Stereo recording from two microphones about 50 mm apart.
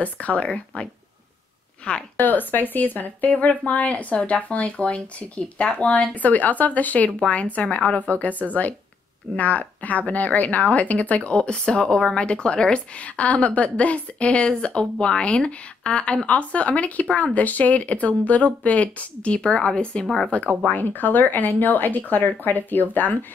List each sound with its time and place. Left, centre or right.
0.0 s a woman's voice: left
2.1 s a woman's voice: left
21.0 s speech: left